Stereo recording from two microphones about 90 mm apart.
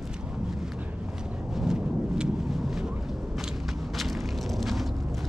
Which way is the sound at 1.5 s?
5° right (ahead or behind).